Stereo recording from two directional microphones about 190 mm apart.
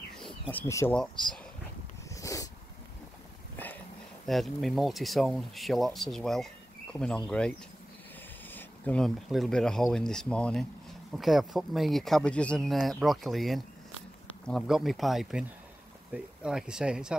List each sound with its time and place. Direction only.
0.2 s bird: 10° left (ahead or behind)
0.9 s speech: 5° left (ahead or behind)
2.0 s dog: 15° left (ahead or behind)
4.3 s speech: centre (ahead or behind)